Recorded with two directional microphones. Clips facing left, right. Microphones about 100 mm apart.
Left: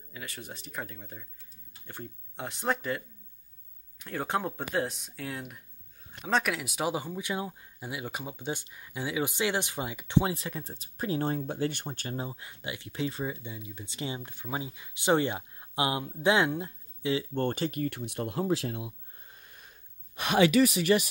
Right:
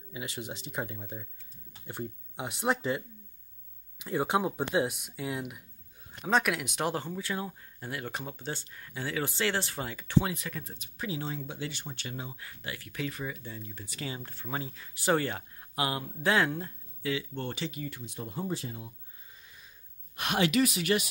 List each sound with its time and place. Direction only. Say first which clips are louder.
0.1 s speech: right 4 dB; 20° right (ahead or behind)
4.0 s speech: right 3 dB; 15° right (ahead or behind); by 10.3 s 20° left (ahead or behind)
10.3 s speech: left 2 dB; 30° left (ahead or behind)
12.4 s speech: left 2 dB; 20° left (ahead or behind)
13.5 s speech: left 1 dB; 10° left (ahead or behind)
13.8 s speech: left 3 dB; 25° left (ahead or behind)
17.3 s speech: left 6 dB; 50° left (ahead or behind); by 18.9 s 85° left
19.4 s sniff: left 1 dB; 50° left (ahead or behind)